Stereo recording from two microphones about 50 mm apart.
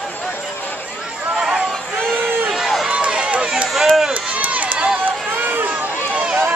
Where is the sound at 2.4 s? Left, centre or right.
Centre.